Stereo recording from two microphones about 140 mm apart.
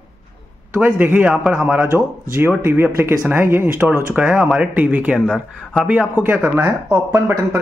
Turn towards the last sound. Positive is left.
turn(degrees=-20)  # may be behind; listen again after turning